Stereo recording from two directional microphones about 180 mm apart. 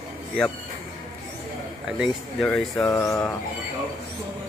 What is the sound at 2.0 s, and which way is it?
Speech, 5° left (ahead or behind).